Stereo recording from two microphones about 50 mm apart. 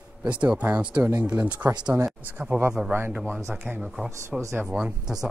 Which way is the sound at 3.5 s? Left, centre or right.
Right.